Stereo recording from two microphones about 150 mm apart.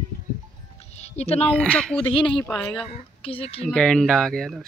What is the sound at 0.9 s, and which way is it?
Music, 45° left (ahead or behind).